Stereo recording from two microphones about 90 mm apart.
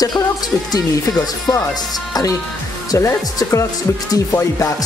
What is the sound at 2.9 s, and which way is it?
Speech, 40° left (ahead or behind).